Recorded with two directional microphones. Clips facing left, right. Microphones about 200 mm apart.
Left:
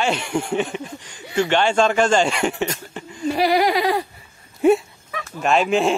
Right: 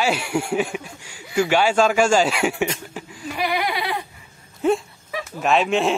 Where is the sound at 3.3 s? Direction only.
35° left (ahead or behind).